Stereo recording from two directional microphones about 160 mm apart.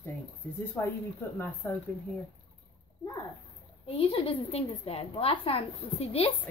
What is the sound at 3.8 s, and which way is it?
A woman's voice, 35° left (ahead or behind).